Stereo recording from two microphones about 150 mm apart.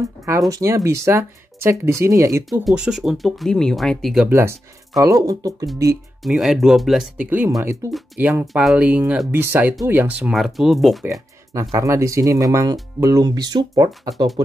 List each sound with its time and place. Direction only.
0.0 s speech: 20° right (ahead or behind)
2.6 s speech: 5° right (ahead or behind)
4.3 s speech: 15° right (ahead or behind)
6.2 s speech: centre (ahead or behind)
11.7 s speech: 20° right (ahead or behind)